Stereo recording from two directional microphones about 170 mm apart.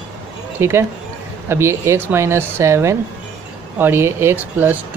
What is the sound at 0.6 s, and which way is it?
Speech, 15° right (ahead or behind).